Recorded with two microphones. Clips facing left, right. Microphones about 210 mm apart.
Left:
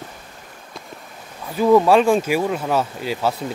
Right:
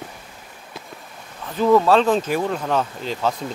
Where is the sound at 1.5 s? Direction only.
10° left (ahead or behind).